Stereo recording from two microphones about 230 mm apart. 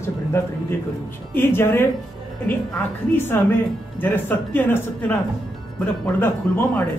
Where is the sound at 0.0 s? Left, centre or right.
Centre.